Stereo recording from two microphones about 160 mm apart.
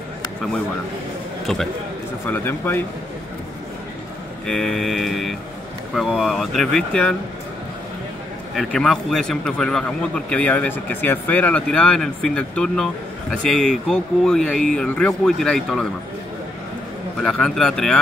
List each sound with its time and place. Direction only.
1.4 s a man's voice: centre (ahead or behind)
2.2 s speech: 15° left (ahead or behind)
4.5 s a man's voice: 5° left (ahead or behind)
8.5 s a man's voice: 5° left (ahead or behind)
17.2 s a man's voice: 5° left (ahead or behind)